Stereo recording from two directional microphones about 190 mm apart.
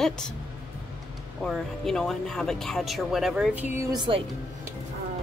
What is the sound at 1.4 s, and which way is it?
Speech, centre (ahead or behind).